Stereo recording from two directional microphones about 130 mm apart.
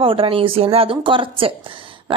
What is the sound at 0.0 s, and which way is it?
A woman's voice, 45° right (ahead or behind).